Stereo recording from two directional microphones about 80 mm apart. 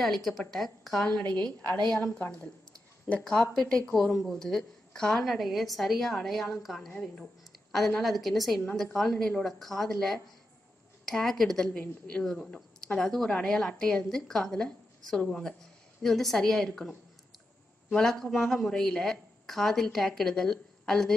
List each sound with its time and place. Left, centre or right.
0.0 s speech: centre
1.0 s a woman's voice: centre
17.9 s speech: centre